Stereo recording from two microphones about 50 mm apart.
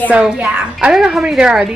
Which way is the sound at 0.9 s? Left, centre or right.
Centre.